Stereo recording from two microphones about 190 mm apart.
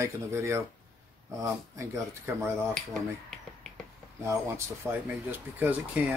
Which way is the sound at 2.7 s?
Centre (ahead or behind).